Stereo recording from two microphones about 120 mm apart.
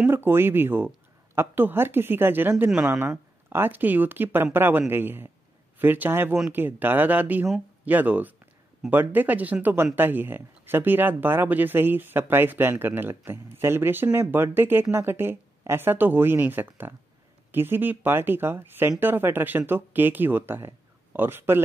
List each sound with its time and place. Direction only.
0.0 s speech: 20° right (ahead or behind)
2.6 s speech: 5° right (ahead or behind)
2.9 s speech: 20° right (ahead or behind)